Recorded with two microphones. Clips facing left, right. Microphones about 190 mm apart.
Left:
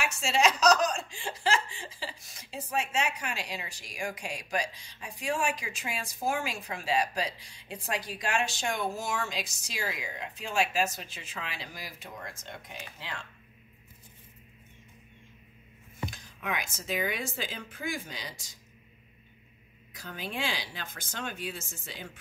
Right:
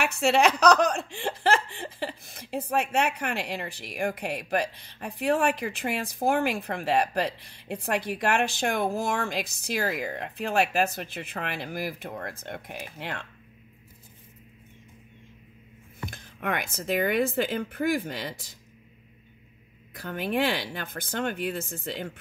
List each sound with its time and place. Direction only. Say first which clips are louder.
0.0 s speech: right 5 dB; 60° right (ahead or behind)
16.1 s speech: right 7 dB; 55° right (ahead or behind)
20.0 s speech: right 9 dB; 60° right (ahead or behind)